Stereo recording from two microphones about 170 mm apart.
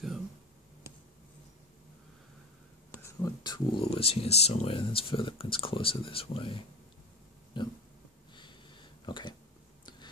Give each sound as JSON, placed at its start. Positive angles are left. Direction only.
{"t": 3.0, "sound": "speech", "side_deg": 20}
{"t": 7.5, "sound": "dog", "side_deg": 30}
{"t": 8.4, "sound": "a sound", "side_deg": 30}